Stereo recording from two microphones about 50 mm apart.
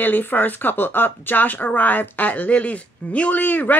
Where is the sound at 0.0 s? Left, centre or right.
Left.